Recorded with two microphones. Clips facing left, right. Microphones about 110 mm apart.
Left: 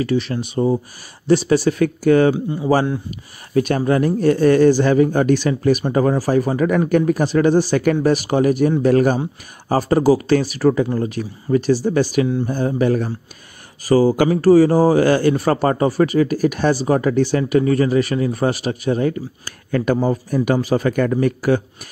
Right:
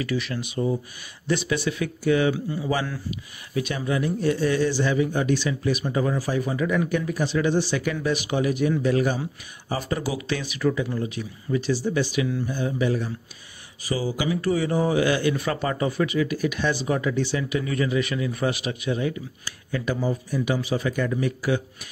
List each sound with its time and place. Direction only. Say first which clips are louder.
0.0 s speech: left 8 dB; 30° left (ahead or behind)
1.8 s a man's voice: left 6 dB; 50° left (ahead or behind)
2.3 s speech: left 8 dB; 30° left (ahead or behind)
3.5 s a man's voice: left 9 dB; 50° left (ahead or behind)